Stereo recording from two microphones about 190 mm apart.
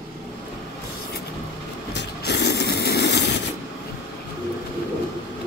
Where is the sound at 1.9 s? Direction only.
65° left (ahead or behind).